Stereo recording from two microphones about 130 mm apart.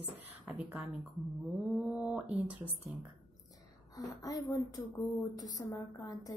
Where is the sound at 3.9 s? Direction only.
25° left (ahead or behind).